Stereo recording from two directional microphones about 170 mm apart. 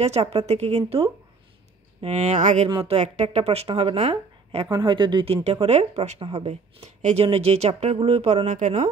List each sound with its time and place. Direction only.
0.0 s speech: 40° right (ahead or behind)
4.6 s speech: 25° right (ahead or behind); by 8.7 s 45° right (ahead or behind)